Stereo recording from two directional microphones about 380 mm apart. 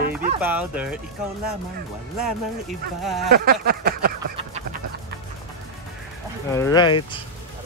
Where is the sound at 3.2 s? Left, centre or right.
Right.